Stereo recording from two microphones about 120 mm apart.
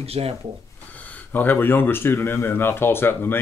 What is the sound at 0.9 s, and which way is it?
Speech, 15° left (ahead or behind).